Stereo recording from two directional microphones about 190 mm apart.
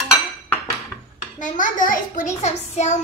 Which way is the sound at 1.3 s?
40° left (ahead or behind).